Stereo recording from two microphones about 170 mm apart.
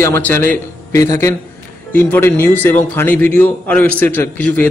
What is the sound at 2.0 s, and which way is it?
A man's voice, 10° left (ahead or behind).